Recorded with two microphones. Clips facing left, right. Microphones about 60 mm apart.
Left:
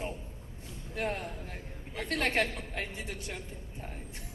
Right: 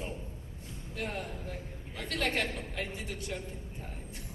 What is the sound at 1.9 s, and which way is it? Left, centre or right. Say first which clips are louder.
Speech: left 3 dB; left.